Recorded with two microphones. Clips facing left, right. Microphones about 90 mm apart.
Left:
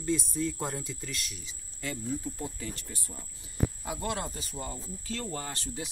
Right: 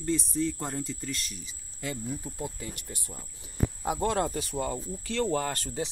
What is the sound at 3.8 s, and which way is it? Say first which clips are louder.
Speech: right 6 dB; 30° right (ahead or behind).